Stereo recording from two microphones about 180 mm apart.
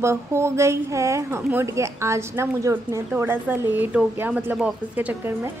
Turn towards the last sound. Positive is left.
turn(degrees=-10)  # may be behind; listen again after turning